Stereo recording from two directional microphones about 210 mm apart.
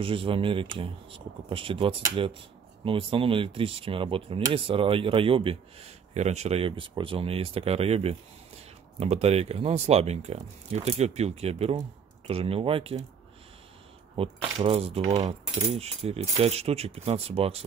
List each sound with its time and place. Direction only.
0.0 s speech: 25° right (ahead or behind)
14.1 s speech: 30° right (ahead or behind)